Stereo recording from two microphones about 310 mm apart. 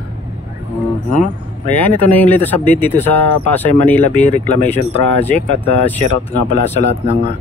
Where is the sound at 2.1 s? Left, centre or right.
Centre.